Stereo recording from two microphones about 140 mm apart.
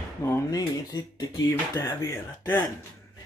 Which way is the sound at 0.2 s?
20° left (ahead or behind).